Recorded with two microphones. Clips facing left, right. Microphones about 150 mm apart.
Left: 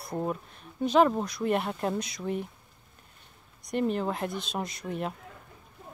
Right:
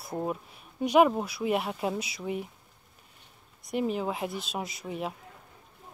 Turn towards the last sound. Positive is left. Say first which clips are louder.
# left 1 dB
turn(degrees=-5)  # may be behind; listen again after turning